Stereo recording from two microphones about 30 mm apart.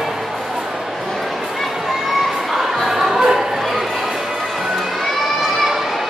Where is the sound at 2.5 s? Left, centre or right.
Centre.